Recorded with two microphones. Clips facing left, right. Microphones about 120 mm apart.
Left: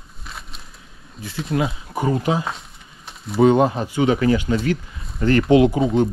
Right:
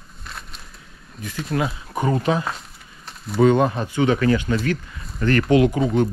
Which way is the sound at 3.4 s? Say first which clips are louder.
Left 2 dB; 25° left (ahead or behind).